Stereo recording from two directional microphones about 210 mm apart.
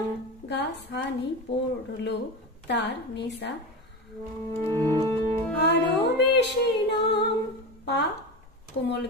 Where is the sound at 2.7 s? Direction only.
55° left (ahead or behind).